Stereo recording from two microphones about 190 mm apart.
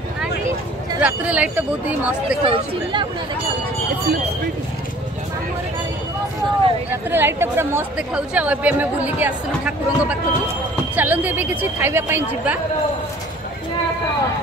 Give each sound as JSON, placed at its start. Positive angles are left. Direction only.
{"t": 1.0, "sound": "a woman's voice", "side_deg": -5}
{"t": 2.4, "sound": "speech", "side_deg": -25}
{"t": 7.1, "sound": "a woman's voice", "side_deg": -10}